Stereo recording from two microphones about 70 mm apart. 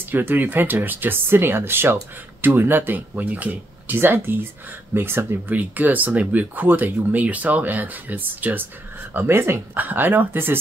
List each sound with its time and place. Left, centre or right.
0.1 s speech: right